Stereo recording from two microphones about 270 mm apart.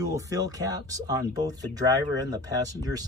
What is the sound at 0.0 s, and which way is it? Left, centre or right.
Speech, centre.